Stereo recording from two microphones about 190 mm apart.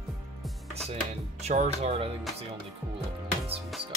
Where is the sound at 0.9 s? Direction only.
35° right (ahead or behind).